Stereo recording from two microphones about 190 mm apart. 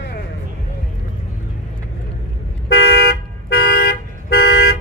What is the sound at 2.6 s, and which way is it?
Toot, 55° left (ahead or behind).